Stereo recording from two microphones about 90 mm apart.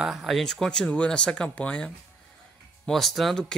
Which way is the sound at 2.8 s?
Centre (ahead or behind).